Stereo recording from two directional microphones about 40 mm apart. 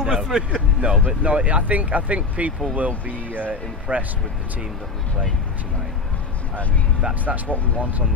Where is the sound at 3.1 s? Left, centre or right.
Right.